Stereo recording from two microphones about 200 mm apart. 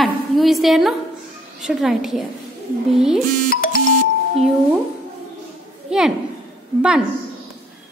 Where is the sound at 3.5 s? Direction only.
45° left (ahead or behind).